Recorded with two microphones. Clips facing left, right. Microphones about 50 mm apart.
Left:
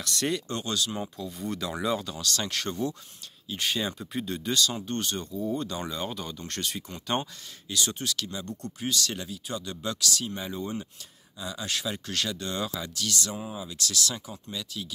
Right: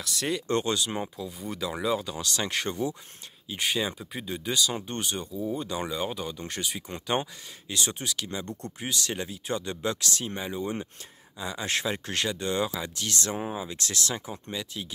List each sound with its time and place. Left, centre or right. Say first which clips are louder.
0.0 s speech: left 1 dB; centre
0.5 s speech: right 4 dB; right
1.1 s speech: left 2 dB; centre
2.1 s speech: right 1 dB; right
7.2 s speech: right 2 dB; right
13.0 s speech: right 1 dB; right